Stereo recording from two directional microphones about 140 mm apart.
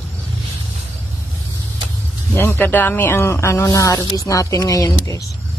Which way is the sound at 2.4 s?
15° left (ahead or behind).